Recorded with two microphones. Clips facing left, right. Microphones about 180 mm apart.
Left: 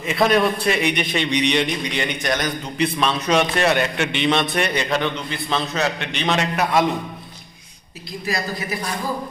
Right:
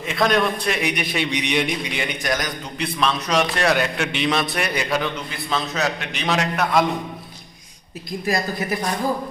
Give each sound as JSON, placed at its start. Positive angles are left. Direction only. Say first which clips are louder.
{"t": 0.0, "sound": "a man's voice", "louder": "left 2 dB", "side_deg": 5}
{"t": 8.3, "sound": "a woman's voice", "louder": "right 2 dB", "side_deg": -50}